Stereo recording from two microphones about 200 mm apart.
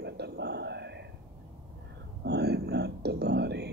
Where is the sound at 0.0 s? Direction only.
55° right (ahead or behind).